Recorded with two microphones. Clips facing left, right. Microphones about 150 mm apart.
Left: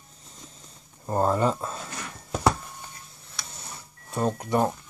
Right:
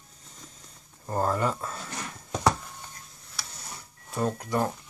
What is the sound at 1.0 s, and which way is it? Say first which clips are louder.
Speech: left 4 dB; 20° left (ahead or behind).